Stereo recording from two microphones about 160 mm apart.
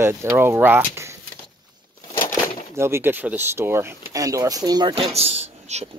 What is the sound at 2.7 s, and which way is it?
Speech, 15° right (ahead or behind).